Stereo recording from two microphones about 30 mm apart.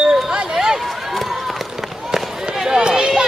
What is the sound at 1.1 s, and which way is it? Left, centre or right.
Run, centre.